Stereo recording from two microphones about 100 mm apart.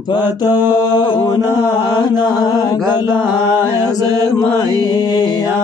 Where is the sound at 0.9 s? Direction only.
45° left (ahead or behind).